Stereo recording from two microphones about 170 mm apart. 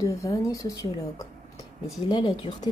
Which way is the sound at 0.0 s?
20° left (ahead or behind).